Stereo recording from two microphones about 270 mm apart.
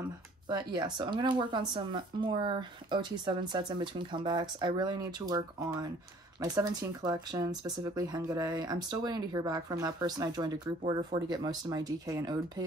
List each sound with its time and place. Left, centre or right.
0.5 s speech: centre